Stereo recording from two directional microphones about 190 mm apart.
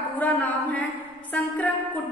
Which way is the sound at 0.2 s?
10° left (ahead or behind).